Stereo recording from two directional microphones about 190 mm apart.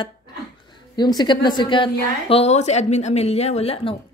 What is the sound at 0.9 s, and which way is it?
A woman's voice, 20° left (ahead or behind).